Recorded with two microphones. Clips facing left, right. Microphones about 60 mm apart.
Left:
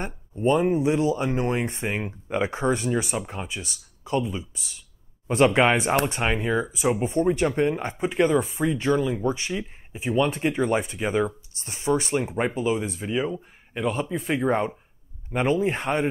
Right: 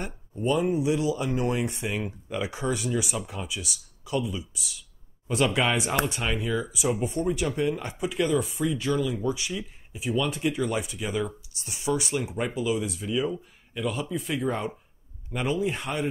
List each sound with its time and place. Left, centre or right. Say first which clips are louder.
0.0 s speech: left 5 dB; left